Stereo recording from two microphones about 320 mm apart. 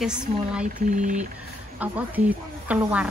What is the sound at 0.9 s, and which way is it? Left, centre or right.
Vehicle, right.